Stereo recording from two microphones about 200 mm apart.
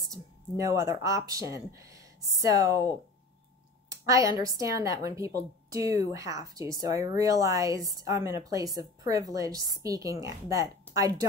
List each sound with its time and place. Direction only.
0.0 s speech: 15° right (ahead or behind)
3.9 s speech: 15° right (ahead or behind)